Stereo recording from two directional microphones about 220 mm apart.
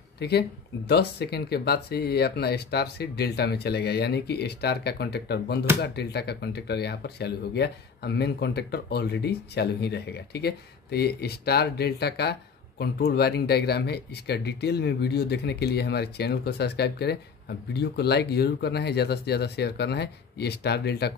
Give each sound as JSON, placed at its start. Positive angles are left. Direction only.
{"t": 0.2, "sound": "speech", "side_deg": 45}